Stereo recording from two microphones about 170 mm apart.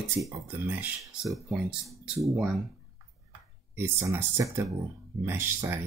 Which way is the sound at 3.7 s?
15° right (ahead or behind).